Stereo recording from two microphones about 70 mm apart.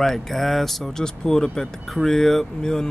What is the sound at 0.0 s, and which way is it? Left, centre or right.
Speech, centre.